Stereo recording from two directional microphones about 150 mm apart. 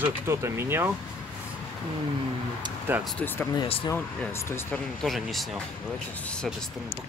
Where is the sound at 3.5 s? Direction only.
35° left (ahead or behind).